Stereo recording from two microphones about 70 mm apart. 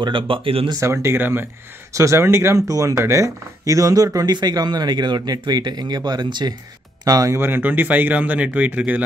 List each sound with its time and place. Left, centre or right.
0.7 s speech: right
2.0 s speech: right
7.1 s speech: right
7.3 s speech: right